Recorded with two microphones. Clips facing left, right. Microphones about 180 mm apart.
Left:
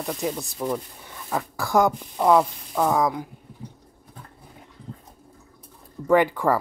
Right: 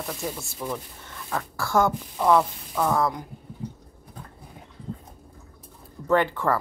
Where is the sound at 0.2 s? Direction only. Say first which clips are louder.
Left 5 dB; 20° left (ahead or behind).